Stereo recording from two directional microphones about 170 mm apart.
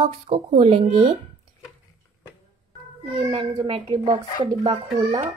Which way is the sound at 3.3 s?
25° right (ahead or behind).